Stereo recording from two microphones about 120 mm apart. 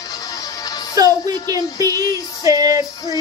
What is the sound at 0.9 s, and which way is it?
Music, 30° right (ahead or behind).